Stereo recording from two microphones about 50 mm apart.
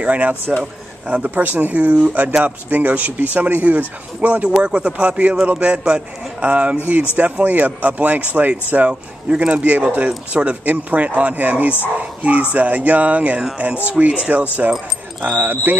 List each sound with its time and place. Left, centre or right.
0.0 s a man's voice: right
15.2 s speech: right